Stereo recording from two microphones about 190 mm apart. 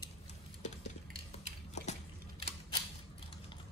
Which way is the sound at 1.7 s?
35° left (ahead or behind).